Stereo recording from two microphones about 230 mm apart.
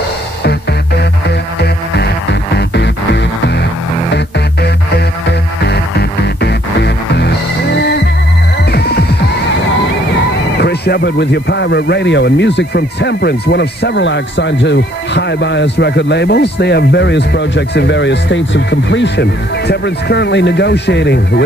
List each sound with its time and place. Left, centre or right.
2.5 s music: left
5.7 s music: left
10.6 s speech: left